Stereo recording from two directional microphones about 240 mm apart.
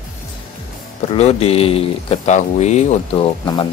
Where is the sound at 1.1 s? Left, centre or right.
Left.